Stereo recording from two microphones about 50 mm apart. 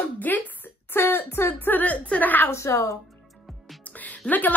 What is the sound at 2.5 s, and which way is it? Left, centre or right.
Speech, left.